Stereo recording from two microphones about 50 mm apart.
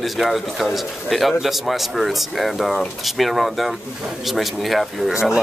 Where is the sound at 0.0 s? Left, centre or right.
Centre.